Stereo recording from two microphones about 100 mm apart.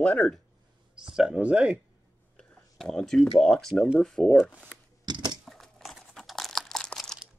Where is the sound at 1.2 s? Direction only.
10° right (ahead or behind).